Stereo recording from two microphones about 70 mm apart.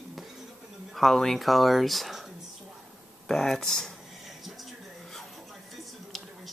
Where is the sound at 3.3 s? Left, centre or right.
Centre.